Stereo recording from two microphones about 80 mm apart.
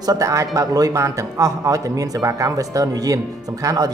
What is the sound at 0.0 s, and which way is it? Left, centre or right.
Speech, right.